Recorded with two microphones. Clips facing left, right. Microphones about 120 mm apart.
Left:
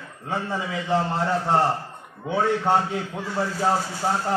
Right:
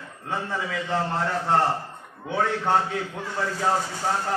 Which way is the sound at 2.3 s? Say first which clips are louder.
Left 2 dB; 15° left (ahead or behind).